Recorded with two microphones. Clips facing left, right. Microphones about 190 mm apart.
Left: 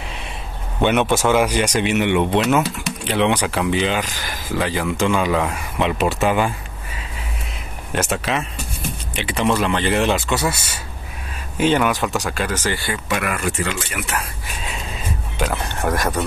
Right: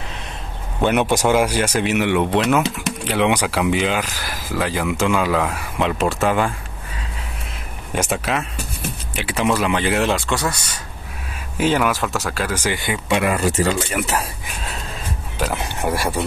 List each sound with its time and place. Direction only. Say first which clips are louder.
0.7 s a man's voice: even; centre (ahead or behind)
1.0 s speech: even; 15° right (ahead or behind); by 6.5 s centre (ahead or behind)
7.9 s speech: even; 10° right (ahead or behind)
12.5 s speech: right 1 dB; 15° right (ahead or behind); by 14.2 s 35° right (ahead or behind)
15.5 s speech: even; 15° right (ahead or behind)